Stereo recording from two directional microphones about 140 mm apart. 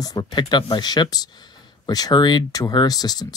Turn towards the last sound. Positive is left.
turn(degrees=25)  # may be behind; listen again after turning